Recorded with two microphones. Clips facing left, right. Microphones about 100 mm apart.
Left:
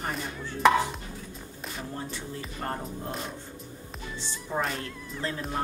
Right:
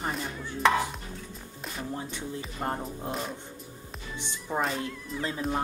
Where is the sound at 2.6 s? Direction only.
15° right (ahead or behind).